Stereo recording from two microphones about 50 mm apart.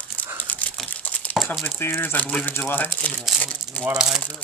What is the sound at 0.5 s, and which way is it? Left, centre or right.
Typing, left.